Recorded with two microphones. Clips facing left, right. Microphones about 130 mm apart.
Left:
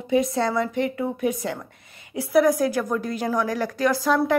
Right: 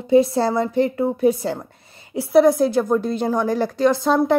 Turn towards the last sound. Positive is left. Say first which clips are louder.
# right 4 dB
turn(degrees=-25)  # may be behind; listen again after turning